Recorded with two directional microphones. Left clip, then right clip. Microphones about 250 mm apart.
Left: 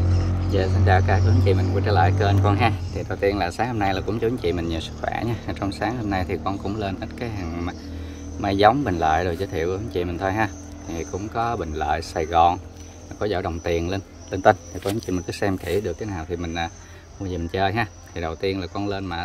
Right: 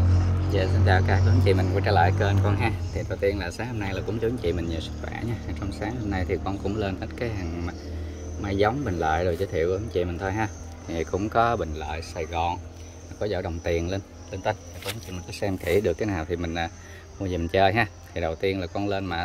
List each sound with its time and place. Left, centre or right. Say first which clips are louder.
0.5 s speech: left 3 dB; centre
11.7 s speech: left 9 dB; centre
14.4 s speech: left 11 dB; centre
15.6 s speech: right 2 dB; centre